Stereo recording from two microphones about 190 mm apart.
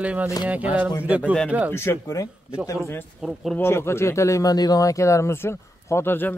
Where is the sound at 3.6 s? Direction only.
15° left (ahead or behind).